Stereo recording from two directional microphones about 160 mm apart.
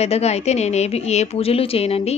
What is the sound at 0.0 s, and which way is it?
A woman's voice, 40° left (ahead or behind).